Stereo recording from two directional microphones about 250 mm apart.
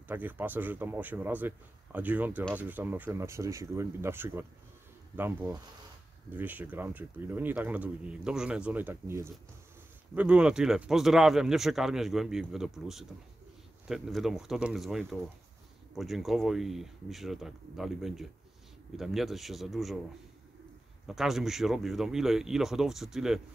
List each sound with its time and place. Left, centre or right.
0.1 s speech: centre
21.1 s speech: centre